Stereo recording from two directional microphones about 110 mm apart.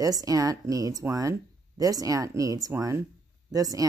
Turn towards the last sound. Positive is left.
turn(degrees=-35)  # may be behind; listen again after turning